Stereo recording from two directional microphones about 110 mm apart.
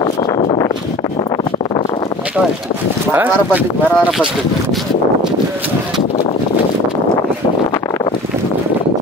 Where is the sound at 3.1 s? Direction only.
20° right (ahead or behind).